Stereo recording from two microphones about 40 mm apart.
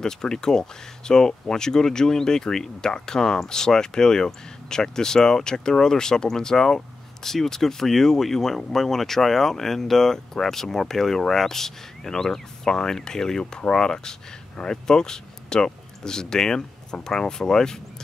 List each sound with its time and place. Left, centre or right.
0.0 s speech: centre